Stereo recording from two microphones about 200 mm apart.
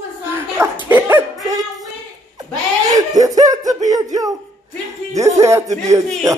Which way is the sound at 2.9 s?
15° right (ahead or behind).